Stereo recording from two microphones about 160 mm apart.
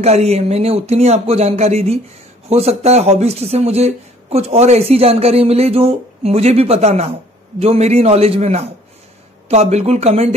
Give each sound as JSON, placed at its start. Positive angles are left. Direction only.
{"t": 0.0, "sound": "speech", "side_deg": -40}